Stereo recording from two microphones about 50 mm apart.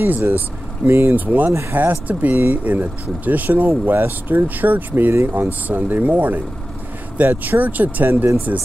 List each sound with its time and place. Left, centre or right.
0.8 s speech: right
1.1 s speech: right